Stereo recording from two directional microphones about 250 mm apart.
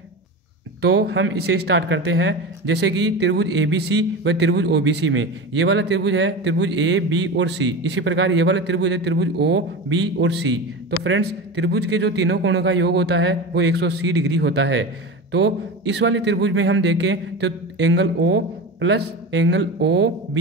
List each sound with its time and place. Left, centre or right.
0.7 s speech: right